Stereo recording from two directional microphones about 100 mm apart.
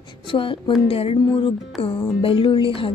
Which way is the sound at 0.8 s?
75° left (ahead or behind).